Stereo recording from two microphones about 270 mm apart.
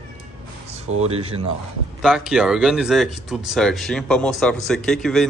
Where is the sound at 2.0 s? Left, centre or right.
Centre.